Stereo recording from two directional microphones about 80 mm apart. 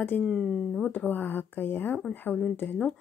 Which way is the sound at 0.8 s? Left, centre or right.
Left.